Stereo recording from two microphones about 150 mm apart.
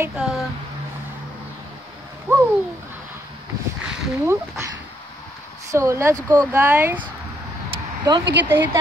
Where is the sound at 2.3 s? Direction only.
15° right (ahead or behind).